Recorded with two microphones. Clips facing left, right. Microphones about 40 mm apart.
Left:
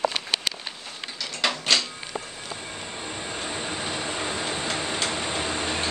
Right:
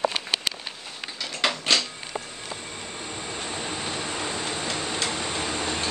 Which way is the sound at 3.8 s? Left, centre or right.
Centre.